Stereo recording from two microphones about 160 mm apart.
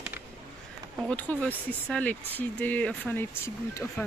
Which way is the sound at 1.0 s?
10° left (ahead or behind).